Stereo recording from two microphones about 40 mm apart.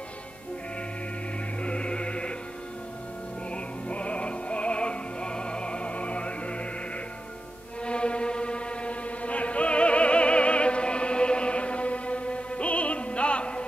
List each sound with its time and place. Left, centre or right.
1.6 s music: left
3.5 s music: left
7.8 s music: left